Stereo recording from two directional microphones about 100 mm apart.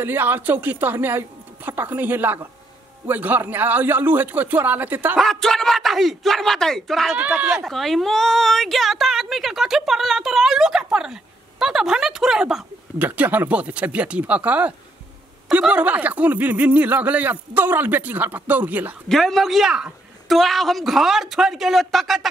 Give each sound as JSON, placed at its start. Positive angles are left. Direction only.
{"t": 0.0, "sound": "speech", "side_deg": -20}
{"t": 5.1, "sound": "a woman's voice", "side_deg": 5}
{"t": 7.2, "sound": "speech", "side_deg": -15}
{"t": 7.6, "sound": "a woman's voice", "side_deg": 0}
{"t": 13.0, "sound": "speech", "side_deg": -15}
{"t": 15.7, "sound": "speech", "side_deg": -15}
{"t": 19.0, "sound": "a woman's voice", "side_deg": 5}